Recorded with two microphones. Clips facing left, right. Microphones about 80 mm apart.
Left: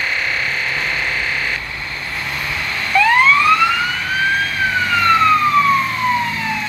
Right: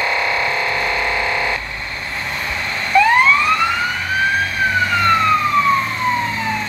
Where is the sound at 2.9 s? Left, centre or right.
Right.